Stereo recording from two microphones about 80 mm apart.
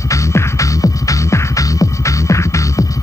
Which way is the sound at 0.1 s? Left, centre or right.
Left.